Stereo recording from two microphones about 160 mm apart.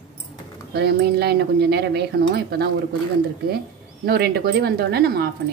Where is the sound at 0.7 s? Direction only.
80° right.